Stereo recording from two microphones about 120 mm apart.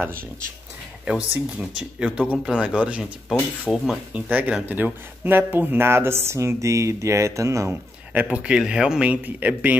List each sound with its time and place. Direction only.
1.0 s speech: 5° right (ahead or behind)
3.7 s speech: centre (ahead or behind)
4.1 s speech: 10° right (ahead or behind)
8.1 s speech: 10° right (ahead or behind)